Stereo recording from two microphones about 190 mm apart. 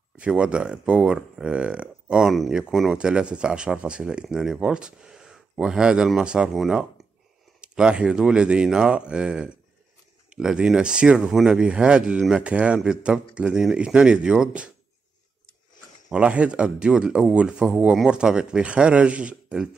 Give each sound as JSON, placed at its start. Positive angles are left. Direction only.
{"t": 0.2, "sound": "speech", "side_deg": -5}
{"t": 16.1, "sound": "speech", "side_deg": -5}